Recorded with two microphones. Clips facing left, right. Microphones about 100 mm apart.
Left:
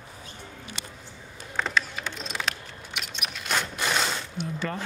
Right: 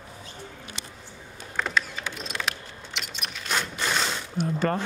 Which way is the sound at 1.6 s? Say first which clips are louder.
Even; centre (ahead or behind).